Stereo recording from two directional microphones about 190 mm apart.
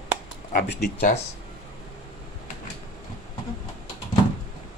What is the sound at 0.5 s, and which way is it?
Speech, 50° left (ahead or behind).